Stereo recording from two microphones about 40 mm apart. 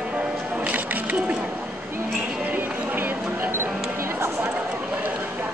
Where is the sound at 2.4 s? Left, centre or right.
Right.